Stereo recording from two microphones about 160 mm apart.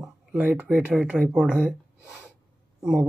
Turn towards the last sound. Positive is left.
turn(degrees=-5)  # may be behind; listen again after turning